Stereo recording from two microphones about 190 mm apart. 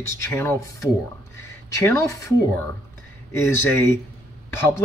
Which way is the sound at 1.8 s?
15° left (ahead or behind).